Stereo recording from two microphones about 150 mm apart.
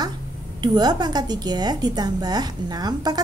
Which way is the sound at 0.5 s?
30° right (ahead or behind).